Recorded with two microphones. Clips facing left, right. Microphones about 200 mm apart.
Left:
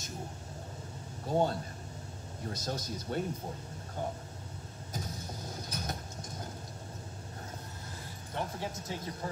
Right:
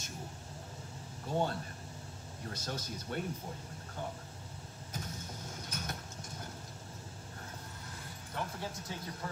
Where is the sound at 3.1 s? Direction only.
35° left (ahead or behind).